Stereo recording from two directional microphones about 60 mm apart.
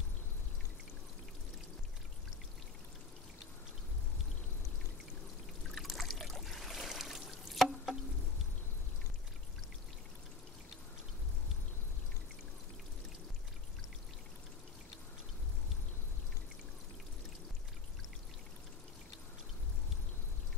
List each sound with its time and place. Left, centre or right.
5.8 s trickle: centre